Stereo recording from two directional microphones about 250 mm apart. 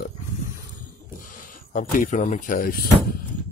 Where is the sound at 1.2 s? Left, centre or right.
Left.